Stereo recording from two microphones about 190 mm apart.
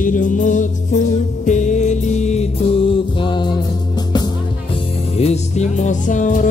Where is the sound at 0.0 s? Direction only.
45° left (ahead or behind).